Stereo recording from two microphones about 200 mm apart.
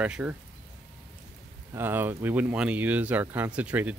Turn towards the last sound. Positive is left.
turn(degrees=-5)  # may be behind; listen again after turning